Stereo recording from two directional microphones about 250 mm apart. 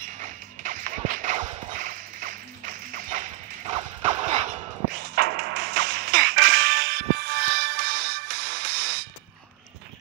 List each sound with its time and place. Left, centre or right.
0.2 s whip: right
1.7 s tap: right
3.7 s a sound: centre
4.5 s whip: right